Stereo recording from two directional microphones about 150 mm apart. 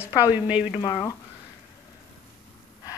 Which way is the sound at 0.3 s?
10° right (ahead or behind).